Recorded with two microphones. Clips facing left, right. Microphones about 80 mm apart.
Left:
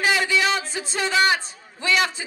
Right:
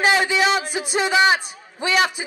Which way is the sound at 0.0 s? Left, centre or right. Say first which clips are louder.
Right 3 dB; right.